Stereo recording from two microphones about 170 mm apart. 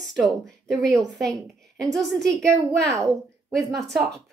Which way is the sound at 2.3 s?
20° right (ahead or behind).